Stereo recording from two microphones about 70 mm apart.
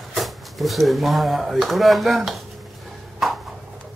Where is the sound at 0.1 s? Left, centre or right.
Centre.